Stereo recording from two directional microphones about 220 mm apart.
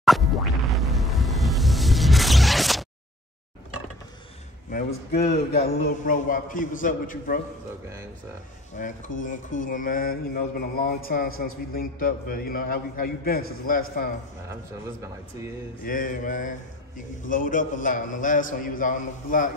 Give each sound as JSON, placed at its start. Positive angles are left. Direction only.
{"t": 0.0, "sound": "music", "side_deg": 0}
{"t": 4.6, "sound": "a man's voice", "side_deg": 40}
{"t": 8.7, "sound": "a man's voice", "side_deg": 35}
{"t": 15.8, "sound": "a man's voice", "side_deg": 40}